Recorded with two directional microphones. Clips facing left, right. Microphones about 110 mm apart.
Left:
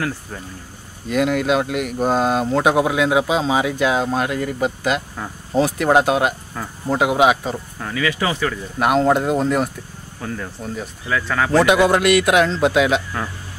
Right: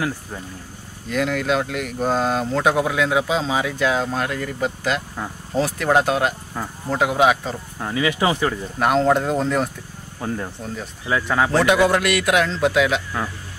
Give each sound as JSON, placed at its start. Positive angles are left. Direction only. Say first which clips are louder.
{"t": 1.1, "sound": "speech", "louder": "left 3 dB", "side_deg": 20}
{"t": 7.8, "sound": "speech", "louder": "right 2 dB", "side_deg": -25}
{"t": 8.7, "sound": "speech", "louder": "left 2 dB", "side_deg": 10}
{"t": 10.2, "sound": "speech", "louder": "right 1 dB", "side_deg": -25}
{"t": 11.5, "sound": "a man's voice", "louder": "left 4 dB", "side_deg": 15}